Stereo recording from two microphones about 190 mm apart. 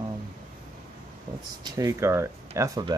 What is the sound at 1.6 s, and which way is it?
Speech, 15° right (ahead or behind).